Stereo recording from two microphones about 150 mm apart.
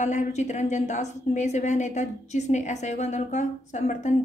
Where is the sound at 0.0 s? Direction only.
55° left (ahead or behind).